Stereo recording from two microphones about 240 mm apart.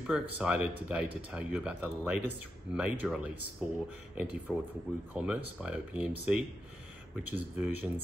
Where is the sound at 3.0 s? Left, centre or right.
Centre.